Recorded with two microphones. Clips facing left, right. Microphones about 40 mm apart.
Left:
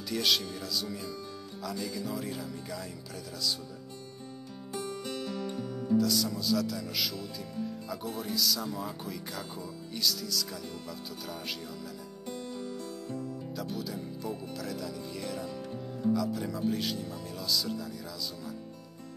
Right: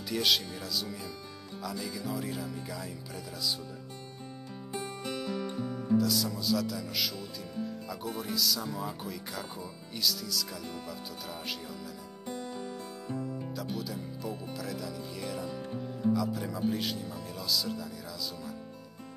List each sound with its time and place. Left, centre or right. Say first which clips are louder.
0.1 s speech: right 1 dB; centre
4.7 s music: even; right; by 7.2 s centre
7.3 s speech: even; centre
12.4 s music: left 1 dB; centre
13.6 s speech: left 3 dB; centre